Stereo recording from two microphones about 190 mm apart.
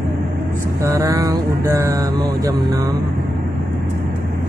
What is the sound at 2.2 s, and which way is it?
Speech, 20° right (ahead or behind).